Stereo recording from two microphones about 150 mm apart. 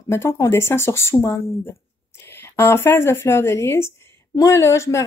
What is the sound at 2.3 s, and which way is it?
Speech, 15° left (ahead or behind).